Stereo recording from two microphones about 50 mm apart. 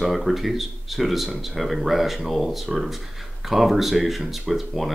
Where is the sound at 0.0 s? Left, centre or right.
Centre.